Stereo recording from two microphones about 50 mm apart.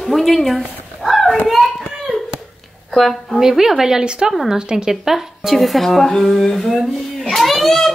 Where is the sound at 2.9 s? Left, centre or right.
Centre.